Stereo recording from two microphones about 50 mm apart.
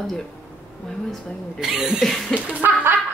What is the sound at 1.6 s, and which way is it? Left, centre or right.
Speech, centre.